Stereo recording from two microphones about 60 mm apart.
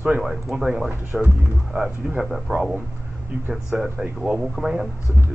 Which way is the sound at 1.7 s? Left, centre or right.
Right.